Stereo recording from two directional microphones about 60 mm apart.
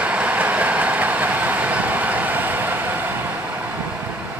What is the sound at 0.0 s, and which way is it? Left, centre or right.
Train, right.